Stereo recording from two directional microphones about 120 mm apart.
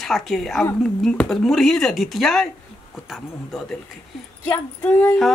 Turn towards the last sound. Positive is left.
turn(degrees=15)  # may be behind; listen again after turning